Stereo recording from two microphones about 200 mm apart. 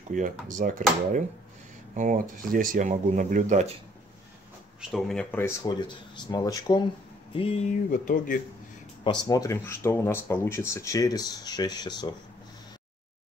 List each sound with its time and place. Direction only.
0.1 s speech: 40° right (ahead or behind)
4.9 s speech: 5° left (ahead or behind); by 6.8 s 20° left (ahead or behind)
7.3 s speech: 30° left (ahead or behind)
9.3 s speech: 15° left (ahead or behind)